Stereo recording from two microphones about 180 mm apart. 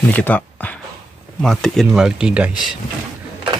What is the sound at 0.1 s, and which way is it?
Speech, 10° left (ahead or behind).